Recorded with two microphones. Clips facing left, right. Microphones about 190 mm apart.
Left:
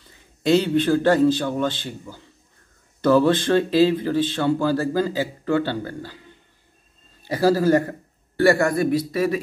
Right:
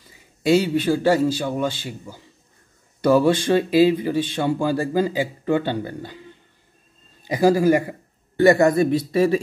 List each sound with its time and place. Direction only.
0.1 s speech: 10° right (ahead or behind)
7.2 s a man's voice: 15° right (ahead or behind)